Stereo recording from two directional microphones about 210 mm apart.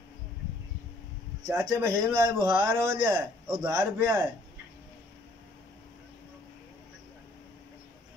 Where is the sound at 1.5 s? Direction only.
10° right (ahead or behind).